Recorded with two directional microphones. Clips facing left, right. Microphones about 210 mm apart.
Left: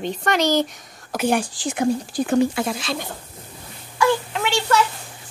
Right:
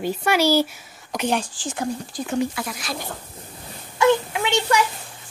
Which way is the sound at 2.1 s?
60° left (ahead or behind).